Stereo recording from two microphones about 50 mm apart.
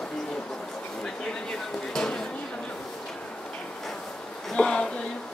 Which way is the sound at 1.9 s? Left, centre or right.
Centre.